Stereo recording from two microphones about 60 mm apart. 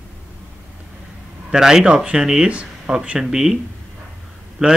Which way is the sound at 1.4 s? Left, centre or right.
Centre.